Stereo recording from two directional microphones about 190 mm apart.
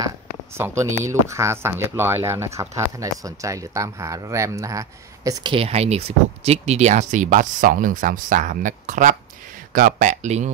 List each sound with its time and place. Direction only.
1.0 s speech: 15° right (ahead or behind); by 10.5 s 40° right (ahead or behind)